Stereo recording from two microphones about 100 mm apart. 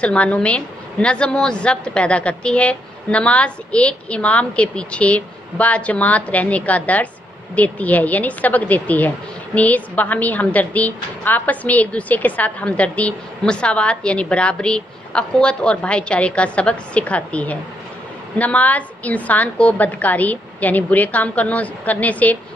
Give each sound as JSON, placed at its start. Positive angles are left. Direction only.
{"t": 0.0, "sound": "speech", "side_deg": 15}